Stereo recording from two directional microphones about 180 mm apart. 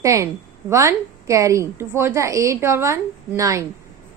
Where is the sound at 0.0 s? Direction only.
15° right (ahead or behind).